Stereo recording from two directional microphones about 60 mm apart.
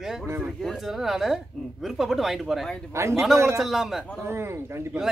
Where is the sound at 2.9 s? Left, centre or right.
Right.